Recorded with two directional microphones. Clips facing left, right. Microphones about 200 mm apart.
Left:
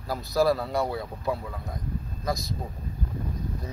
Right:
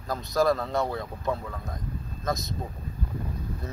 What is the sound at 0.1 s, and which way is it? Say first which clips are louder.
Speech: left 1 dB; 5° left (ahead or behind).